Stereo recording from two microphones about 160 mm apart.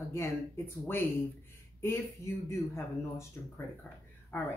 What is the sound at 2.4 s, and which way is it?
Speech, 15° left (ahead or behind).